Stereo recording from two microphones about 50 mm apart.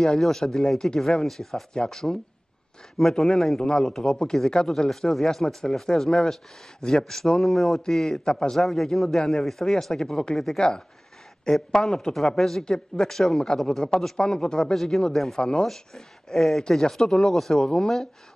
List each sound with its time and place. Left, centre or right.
0.2 s speech: centre